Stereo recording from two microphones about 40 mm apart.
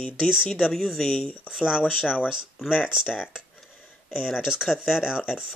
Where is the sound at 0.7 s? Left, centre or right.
Centre.